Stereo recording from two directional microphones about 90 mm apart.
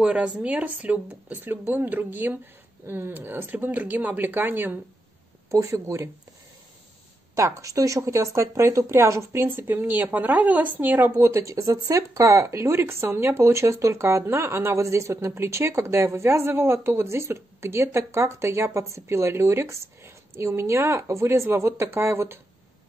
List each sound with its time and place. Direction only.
0.0 s speech: 10° right (ahead or behind)
5.5 s speech: 35° right (ahead or behind)
7.3 s speech: 35° right (ahead or behind)